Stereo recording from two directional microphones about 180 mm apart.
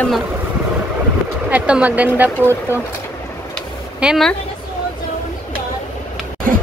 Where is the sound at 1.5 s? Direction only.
5° right (ahead or behind).